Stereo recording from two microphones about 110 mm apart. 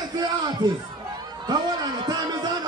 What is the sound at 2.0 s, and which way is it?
Music, 40° right (ahead or behind).